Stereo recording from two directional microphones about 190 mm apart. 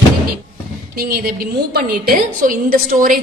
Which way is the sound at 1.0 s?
55° right (ahead or behind).